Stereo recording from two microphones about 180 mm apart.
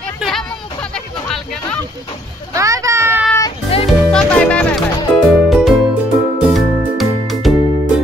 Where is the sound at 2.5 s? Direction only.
15° right (ahead or behind).